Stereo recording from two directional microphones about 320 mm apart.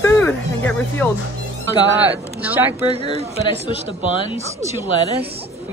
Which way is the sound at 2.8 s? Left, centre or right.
Centre.